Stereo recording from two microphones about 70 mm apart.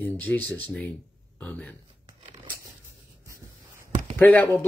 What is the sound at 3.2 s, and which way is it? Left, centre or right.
Spray, right.